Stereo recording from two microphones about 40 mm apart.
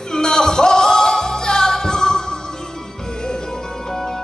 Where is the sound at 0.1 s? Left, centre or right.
Centre.